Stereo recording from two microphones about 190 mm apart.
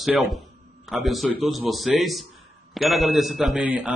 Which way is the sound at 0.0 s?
Centre (ahead or behind).